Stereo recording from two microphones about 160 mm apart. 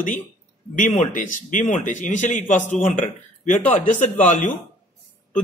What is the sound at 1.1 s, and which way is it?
A man's voice, 55° left (ahead or behind).